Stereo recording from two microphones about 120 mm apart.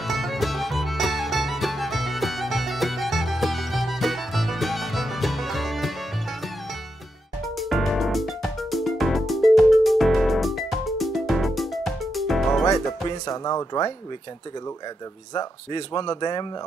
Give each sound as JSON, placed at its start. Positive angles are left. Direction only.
{"t": 0.0, "sound": "music", "side_deg": 0}
{"t": 7.4, "sound": "music", "side_deg": 0}
{"t": 13.3, "sound": "speech", "side_deg": 30}
{"t": 15.3, "sound": "speech", "side_deg": 35}